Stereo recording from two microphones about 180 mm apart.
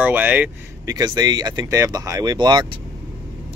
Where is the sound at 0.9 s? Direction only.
20° right (ahead or behind).